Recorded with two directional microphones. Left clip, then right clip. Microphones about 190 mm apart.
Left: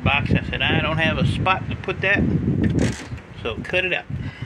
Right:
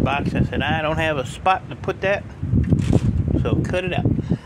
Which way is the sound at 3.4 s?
30° right (ahead or behind).